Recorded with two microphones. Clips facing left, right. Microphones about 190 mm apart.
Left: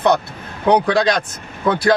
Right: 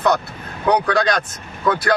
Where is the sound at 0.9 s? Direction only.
25° left (ahead or behind).